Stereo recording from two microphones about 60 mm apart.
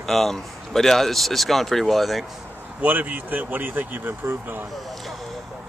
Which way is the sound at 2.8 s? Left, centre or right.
Right.